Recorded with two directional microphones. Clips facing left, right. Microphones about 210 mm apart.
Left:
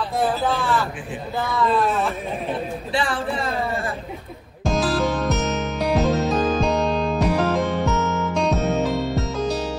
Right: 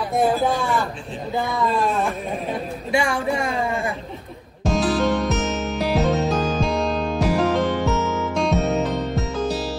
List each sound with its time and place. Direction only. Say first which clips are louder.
0.1 s a sound: right 4 dB; 15° right (ahead or behind)
1.4 s speech: left 1 dB; 20° right (ahead or behind)
1.7 s speech: left 2 dB; centre (ahead or behind)
2.9 s speech: right 4 dB; 15° right (ahead or behind)
4.6 s music: right 1 dB; centre (ahead or behind)